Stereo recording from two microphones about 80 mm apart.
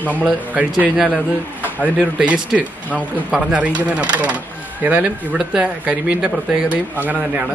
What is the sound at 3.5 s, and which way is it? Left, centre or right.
Speech, centre.